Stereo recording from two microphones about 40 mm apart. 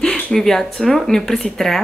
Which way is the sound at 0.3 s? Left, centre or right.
Centre.